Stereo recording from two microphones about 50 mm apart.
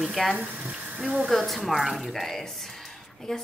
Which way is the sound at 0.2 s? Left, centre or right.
Centre.